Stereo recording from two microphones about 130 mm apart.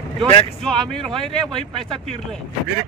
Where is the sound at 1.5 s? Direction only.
45° right (ahead or behind).